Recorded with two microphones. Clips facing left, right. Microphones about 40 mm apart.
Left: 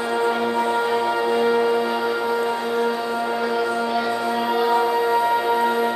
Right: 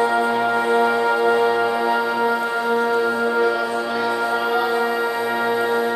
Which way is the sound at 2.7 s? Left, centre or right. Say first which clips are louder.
Right 5 dB; right.